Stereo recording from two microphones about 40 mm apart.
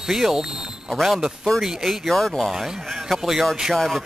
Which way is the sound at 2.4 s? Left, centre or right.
Centre.